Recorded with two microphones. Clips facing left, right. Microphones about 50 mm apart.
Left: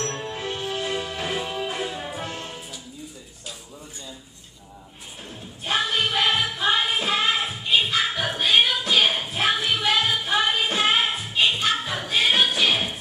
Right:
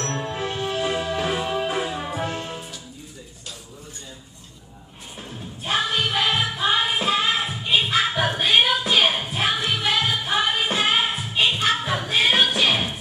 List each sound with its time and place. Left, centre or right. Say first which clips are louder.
0.2 s music: right 3 dB; right
5.6 s music: even; centre
7.6 s music: right 1 dB; centre
9.5 s music: left 2 dB; centre
9.8 s music: even; centre